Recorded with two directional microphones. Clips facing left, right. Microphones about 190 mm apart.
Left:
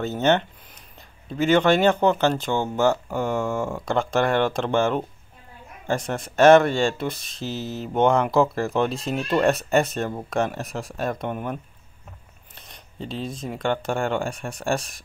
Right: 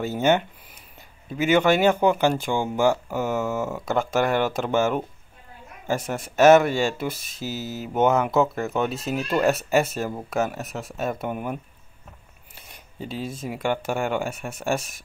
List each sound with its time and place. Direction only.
0.0 s speech: 10° right (ahead or behind)